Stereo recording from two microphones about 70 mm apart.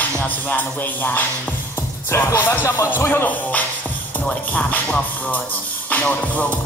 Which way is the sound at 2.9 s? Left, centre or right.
Left.